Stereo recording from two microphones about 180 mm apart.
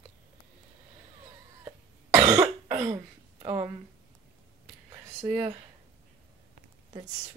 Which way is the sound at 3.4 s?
20° right (ahead or behind).